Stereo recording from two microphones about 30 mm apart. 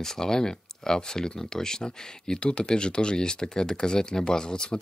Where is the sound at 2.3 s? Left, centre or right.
Left.